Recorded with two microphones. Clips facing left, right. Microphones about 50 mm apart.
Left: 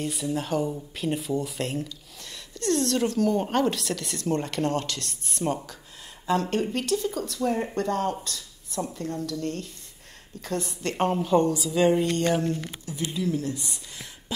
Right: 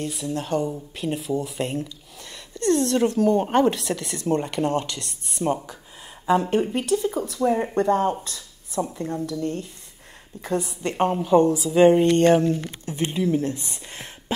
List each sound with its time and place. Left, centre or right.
0.0 s speech: centre
2.5 s speech: centre
3.2 s speech: centre
6.2 s speech: centre
11.6 s speech: right